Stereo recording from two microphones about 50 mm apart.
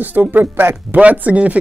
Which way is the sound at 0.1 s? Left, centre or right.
Right.